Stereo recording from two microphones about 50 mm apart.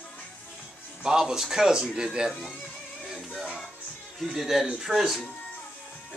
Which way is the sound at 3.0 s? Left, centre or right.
Centre.